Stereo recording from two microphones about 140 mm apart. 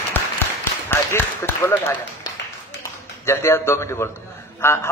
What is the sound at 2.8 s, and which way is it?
A man's voice, 20° left (ahead or behind).